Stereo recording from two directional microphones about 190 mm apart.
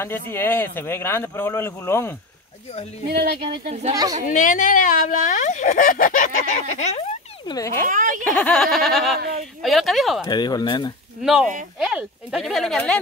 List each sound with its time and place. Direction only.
0.0 s speech: 10° left (ahead or behind)
3.1 s speech: 55° right (ahead or behind)
3.9 s a woman's voice: 20° right (ahead or behind)
4.3 s speech: 45° left (ahead or behind)
7.5 s speech: 15° left (ahead or behind)
7.9 s speech: 45° right (ahead or behind)
8.2 s speech: 5° left (ahead or behind)
10.2 s speech: 20° left (ahead or behind)
11.8 s speech: 5° right (ahead or behind)